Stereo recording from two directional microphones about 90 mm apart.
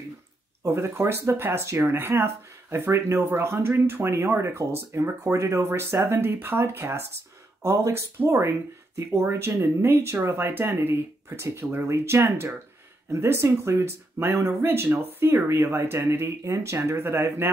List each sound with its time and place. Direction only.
0.7 s speech: 30° right (ahead or behind)